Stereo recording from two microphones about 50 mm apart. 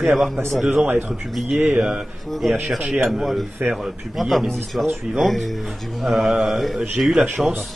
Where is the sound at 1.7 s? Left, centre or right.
Centre.